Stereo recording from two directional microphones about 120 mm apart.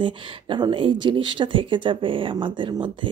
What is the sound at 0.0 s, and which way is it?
Speech, 40° right (ahead or behind).